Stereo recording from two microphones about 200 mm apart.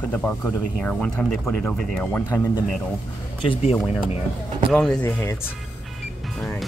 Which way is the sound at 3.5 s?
30° left (ahead or behind).